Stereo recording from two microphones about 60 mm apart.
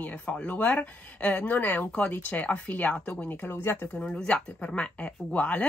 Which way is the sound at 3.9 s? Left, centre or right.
Centre.